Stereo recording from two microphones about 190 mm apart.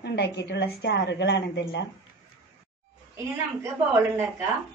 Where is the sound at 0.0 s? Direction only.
60° left (ahead or behind).